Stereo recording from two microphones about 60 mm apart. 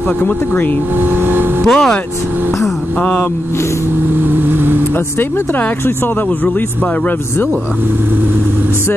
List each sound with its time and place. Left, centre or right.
1.6 s speech: centre
3.0 s speech: left
4.2 s vehicle: right